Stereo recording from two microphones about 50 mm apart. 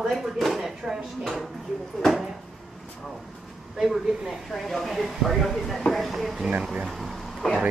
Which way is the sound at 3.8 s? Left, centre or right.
Centre.